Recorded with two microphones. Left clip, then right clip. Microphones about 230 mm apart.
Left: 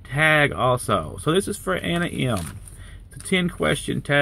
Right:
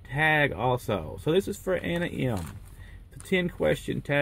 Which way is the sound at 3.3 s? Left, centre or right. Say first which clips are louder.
Left 3 dB; centre.